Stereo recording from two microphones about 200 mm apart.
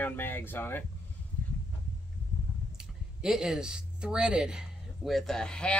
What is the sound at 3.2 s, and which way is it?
Speech, 5° right (ahead or behind).